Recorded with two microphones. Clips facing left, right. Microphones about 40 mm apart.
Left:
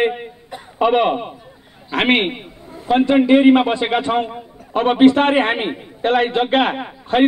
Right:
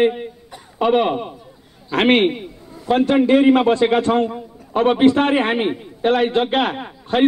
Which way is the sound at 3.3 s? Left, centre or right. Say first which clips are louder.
Left 1 dB; left.